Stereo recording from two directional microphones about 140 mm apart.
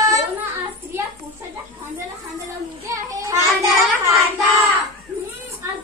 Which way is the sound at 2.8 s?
25° right (ahead or behind).